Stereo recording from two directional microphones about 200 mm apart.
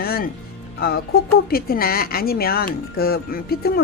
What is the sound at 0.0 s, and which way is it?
Music, 50° left (ahead or behind).